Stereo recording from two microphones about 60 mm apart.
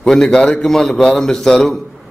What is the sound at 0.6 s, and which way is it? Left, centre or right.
A man's voice, centre.